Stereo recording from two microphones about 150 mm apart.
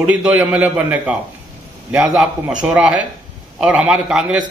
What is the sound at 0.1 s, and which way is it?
A man's voice, 10° right (ahead or behind).